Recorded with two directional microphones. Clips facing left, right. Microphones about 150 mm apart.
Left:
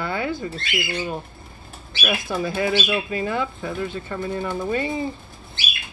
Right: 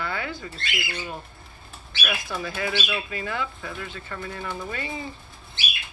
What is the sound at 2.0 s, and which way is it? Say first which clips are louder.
Speech: left 6 dB; 25° left (ahead or behind).